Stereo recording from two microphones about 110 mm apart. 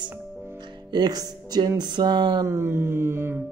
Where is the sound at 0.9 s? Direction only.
35° right (ahead or behind).